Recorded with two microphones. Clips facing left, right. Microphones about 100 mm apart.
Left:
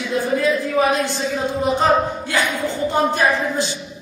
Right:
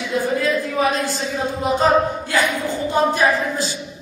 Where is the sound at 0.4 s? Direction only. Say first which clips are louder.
Left 2 dB; 20° left (ahead or behind).